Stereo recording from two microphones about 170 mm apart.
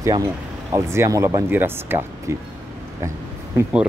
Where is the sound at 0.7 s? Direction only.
20° right (ahead or behind).